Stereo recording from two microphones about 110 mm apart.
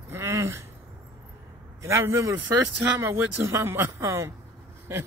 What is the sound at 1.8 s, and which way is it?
A man's voice, 25° right (ahead or behind).